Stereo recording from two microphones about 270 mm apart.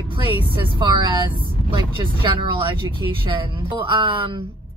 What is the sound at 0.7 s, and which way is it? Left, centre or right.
Speech, centre.